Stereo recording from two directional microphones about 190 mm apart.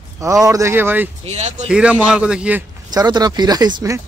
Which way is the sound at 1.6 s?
5° right (ahead or behind).